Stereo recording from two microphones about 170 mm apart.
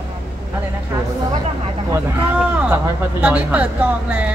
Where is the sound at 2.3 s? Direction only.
5° right (ahead or behind).